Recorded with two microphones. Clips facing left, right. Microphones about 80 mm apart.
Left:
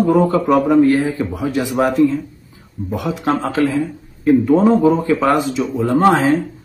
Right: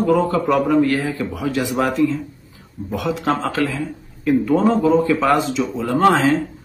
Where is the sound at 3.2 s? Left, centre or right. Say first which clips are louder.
Left 5 dB; left.